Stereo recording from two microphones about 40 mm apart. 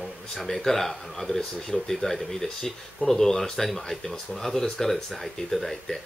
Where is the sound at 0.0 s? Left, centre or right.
Centre.